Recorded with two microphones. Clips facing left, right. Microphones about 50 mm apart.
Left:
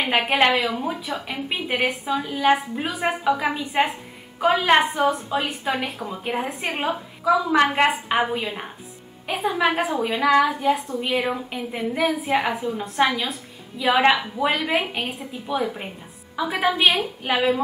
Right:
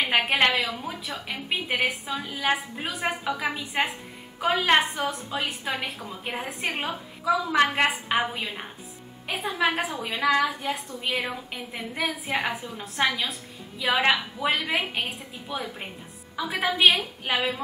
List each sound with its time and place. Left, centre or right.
0.0 s a woman's voice: centre
0.7 s a woman's voice: centre
1.2 s a woman's voice: centre